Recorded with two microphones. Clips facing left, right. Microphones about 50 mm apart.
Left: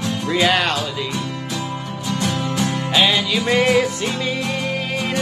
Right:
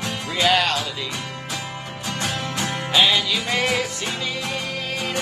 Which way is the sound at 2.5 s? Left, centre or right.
Right.